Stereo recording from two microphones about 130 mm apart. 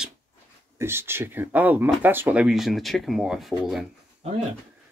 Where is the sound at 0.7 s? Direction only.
20° right (ahead or behind); by 3.9 s centre (ahead or behind).